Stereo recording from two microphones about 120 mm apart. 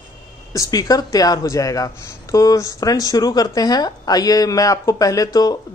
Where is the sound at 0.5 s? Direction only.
30° left (ahead or behind).